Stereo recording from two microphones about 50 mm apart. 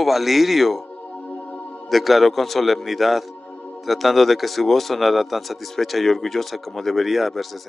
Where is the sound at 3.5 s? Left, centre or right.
Left.